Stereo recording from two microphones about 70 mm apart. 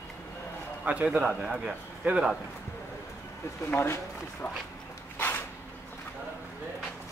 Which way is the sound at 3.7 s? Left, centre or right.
Left.